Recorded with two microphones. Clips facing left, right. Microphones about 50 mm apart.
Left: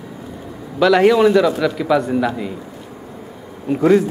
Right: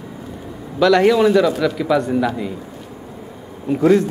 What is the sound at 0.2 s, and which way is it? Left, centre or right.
A man's voice, centre.